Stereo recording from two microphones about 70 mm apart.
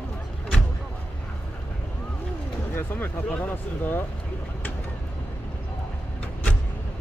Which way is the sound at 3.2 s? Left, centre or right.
Left.